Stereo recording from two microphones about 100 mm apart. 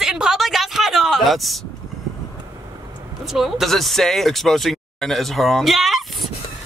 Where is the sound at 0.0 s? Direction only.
5° right (ahead or behind).